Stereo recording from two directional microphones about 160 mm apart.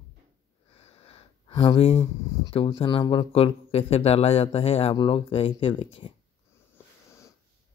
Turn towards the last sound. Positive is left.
turn(degrees=35)  # may be behind; listen again after turning